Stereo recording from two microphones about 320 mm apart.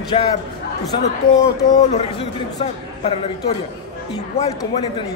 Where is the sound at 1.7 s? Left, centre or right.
Centre.